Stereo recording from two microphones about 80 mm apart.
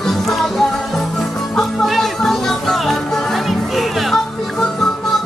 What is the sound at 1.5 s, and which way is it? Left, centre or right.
Music, centre.